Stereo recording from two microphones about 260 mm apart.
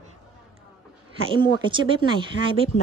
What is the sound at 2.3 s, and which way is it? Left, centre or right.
Speech, left.